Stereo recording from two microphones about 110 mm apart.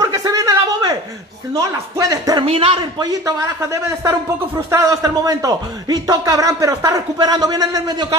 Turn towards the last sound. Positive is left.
turn(degrees=-35)  # may be behind; listen again after turning